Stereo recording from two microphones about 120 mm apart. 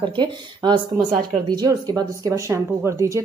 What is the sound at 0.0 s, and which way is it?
Speech, 40° right (ahead or behind).